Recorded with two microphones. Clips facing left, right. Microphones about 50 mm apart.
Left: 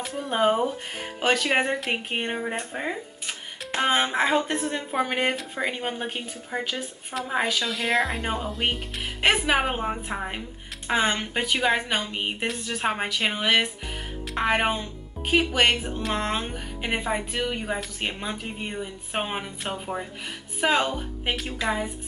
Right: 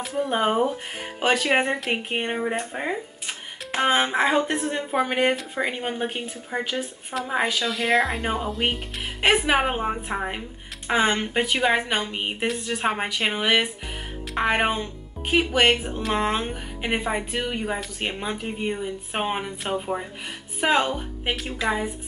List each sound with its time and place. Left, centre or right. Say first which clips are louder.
0.0 s a woman's voice: even; centre